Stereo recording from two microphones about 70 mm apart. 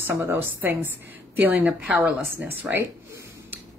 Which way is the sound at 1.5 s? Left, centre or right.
Centre.